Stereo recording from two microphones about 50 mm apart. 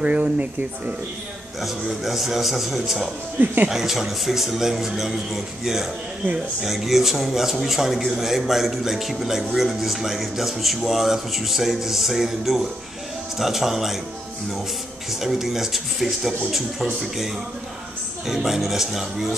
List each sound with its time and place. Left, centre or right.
0.0 s speech: right
1.6 s speech: centre
15.0 s speech: centre
18.2 s speech: centre